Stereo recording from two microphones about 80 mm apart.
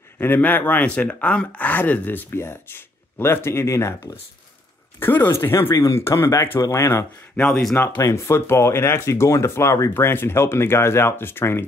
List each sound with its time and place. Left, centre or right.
0.2 s speech: left
5.0 s speech: left
5.3 s speech: left
7.3 s speech: centre
8.0 s speech: left